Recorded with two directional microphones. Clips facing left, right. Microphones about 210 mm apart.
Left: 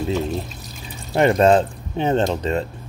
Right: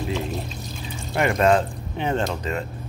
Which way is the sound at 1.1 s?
30° left (ahead or behind).